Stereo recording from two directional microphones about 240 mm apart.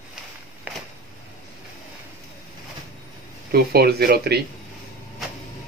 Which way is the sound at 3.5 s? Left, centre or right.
Right.